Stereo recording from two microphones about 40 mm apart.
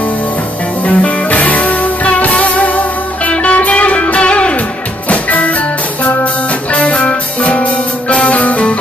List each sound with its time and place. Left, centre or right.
0.8 s music: left
6.7 s music: left